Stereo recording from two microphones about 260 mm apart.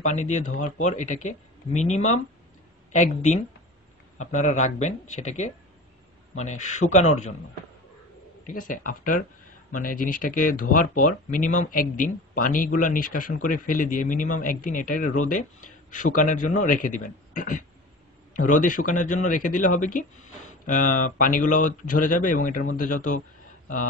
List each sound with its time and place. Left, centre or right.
0.0 s speech: left
8.5 s speech: left